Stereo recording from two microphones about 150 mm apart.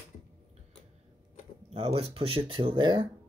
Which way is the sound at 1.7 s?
40° right (ahead or behind).